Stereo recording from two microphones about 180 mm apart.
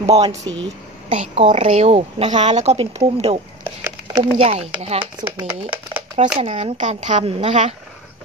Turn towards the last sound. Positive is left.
turn(degrees=-40)  # may be behind; listen again after turning